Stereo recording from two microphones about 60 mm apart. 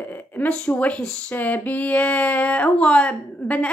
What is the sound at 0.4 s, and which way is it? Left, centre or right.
Speech, left.